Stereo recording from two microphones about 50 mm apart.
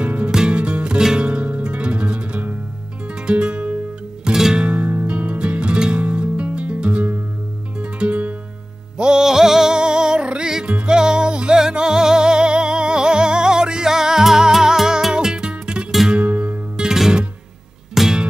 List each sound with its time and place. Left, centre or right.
0.0 s music: right
4.2 s music: centre
4.6 s music: right
9.2 s music: centre; by 16.8 s right
16.8 s music: centre